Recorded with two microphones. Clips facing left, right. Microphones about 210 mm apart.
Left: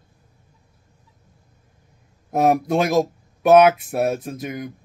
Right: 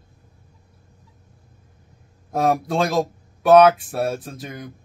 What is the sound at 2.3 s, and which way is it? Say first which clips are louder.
A man's voice: left 3 dB; 20° left (ahead or behind).